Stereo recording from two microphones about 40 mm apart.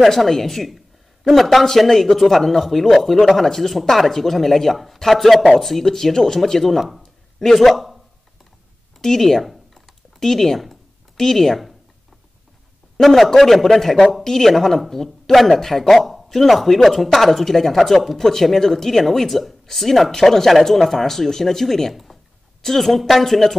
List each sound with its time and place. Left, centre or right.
0.0 s speech: centre
7.0 s a sound: centre
9.0 s computer keyboard: centre
10.2 s speech: centre
12.9 s speech: centre